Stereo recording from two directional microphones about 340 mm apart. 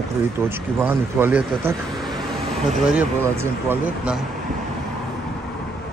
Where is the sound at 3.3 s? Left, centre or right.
Centre.